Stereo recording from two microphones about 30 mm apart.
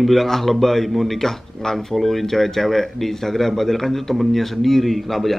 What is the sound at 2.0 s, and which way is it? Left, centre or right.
Speech, centre.